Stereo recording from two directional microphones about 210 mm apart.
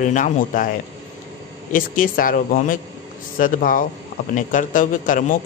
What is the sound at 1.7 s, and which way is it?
A man's voice, 40° left (ahead or behind).